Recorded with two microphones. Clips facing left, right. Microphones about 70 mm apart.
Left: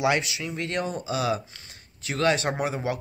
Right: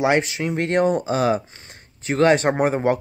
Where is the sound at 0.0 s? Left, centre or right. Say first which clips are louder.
Right 5 dB; right.